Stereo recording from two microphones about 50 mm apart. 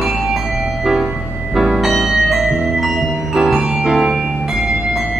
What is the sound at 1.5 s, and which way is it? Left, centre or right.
Music, centre.